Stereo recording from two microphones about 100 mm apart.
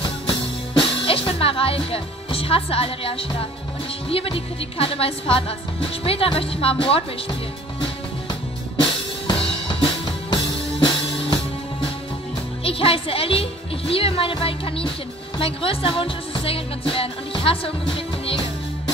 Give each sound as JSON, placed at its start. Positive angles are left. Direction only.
{"t": 0.3, "sound": "music", "side_deg": 65}
{"t": 4.1, "sound": "speech", "side_deg": 70}
{"t": 9.3, "sound": "drum kit", "side_deg": 55}
{"t": 12.6, "sound": "speech", "side_deg": 70}
{"t": 15.3, "sound": "music", "side_deg": 65}